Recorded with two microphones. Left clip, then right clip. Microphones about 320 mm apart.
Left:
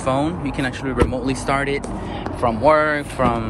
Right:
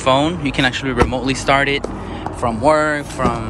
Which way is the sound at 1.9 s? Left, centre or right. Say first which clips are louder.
Even; centre.